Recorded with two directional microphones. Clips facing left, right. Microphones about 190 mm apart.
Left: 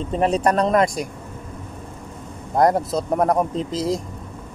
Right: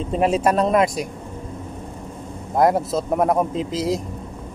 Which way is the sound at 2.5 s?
5° right (ahead or behind).